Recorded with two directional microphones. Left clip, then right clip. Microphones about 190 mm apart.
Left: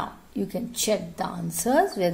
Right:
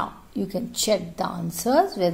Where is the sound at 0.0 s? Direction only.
10° right (ahead or behind).